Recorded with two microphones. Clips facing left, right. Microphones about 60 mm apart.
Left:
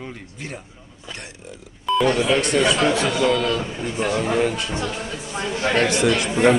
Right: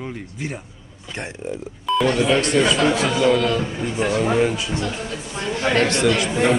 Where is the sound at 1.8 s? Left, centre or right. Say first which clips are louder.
Even; centre.